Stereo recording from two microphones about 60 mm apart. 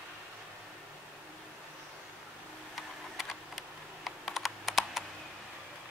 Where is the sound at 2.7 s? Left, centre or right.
Centre.